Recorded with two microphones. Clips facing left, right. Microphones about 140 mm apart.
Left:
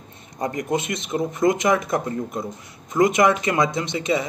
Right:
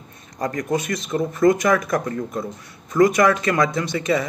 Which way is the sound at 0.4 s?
20° left (ahead or behind).